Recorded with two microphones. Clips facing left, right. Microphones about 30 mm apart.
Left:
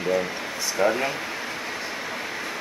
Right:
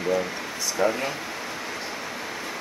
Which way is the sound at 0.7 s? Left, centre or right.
Centre.